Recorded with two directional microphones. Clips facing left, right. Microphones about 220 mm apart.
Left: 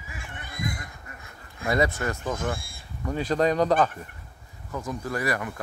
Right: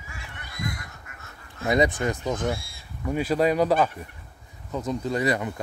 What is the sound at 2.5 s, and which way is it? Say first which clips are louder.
Speech: right 1 dB; 50° left (ahead or behind).